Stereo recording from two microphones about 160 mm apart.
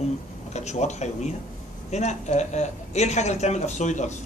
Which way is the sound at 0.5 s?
45° left (ahead or behind).